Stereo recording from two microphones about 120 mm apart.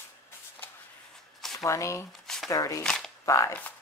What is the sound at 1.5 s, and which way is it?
Speech, 25° left (ahead or behind).